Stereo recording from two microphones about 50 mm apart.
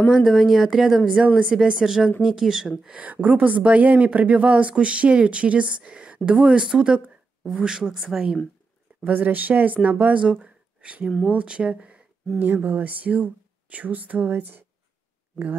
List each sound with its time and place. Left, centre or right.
0.1 s speech: centre
1.2 s speech: right; by 2.7 s centre
2.9 s speech: right; by 8.4 s centre
9.0 s speech: right
10.4 s a sound: right
11.2 s speech: right
12.6 s speech: right